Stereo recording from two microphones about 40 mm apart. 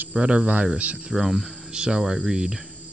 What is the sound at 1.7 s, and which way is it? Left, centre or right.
Speech, right.